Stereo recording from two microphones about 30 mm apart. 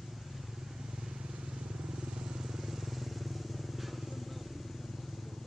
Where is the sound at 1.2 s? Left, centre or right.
Right.